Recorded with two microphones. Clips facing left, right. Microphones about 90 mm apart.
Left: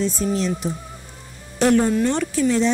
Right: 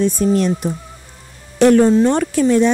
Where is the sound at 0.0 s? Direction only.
55° right (ahead or behind).